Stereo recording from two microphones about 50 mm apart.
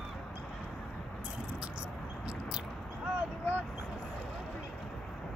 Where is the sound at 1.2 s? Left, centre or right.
Right.